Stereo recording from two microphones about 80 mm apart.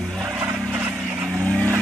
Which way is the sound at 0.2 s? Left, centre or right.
Right.